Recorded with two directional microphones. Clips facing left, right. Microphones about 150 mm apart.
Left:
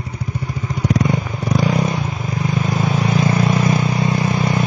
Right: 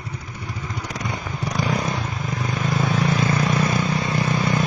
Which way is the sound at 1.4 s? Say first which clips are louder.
Left 5 dB; 5° left (ahead or behind).